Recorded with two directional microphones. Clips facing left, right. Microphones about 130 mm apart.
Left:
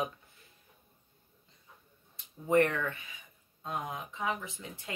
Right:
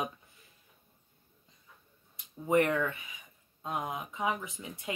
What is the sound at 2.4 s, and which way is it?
Speech, 15° right (ahead or behind).